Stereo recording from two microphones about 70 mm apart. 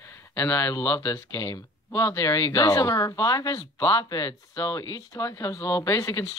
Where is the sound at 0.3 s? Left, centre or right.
Left.